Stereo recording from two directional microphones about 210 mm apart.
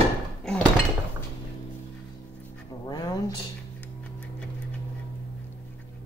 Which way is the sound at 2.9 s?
20° left (ahead or behind).